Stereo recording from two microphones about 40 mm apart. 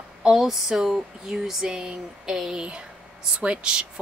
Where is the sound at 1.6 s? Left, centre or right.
Right.